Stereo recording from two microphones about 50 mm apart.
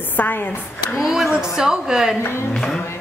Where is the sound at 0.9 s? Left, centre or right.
Centre.